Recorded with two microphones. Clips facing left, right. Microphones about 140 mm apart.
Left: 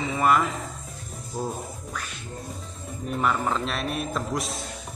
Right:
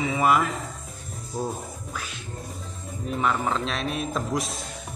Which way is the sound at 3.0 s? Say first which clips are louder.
Even; centre (ahead or behind).